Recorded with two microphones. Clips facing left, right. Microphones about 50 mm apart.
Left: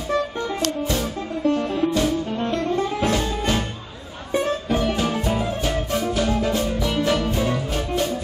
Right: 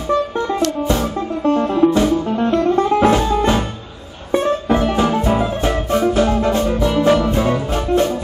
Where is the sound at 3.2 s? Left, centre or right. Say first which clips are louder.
Right 7 dB; right.